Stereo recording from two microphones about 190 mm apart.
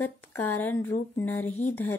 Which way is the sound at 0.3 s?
10° left (ahead or behind).